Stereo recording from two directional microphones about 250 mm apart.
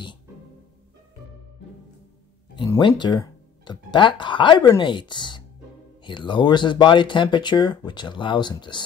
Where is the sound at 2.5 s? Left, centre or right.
Centre.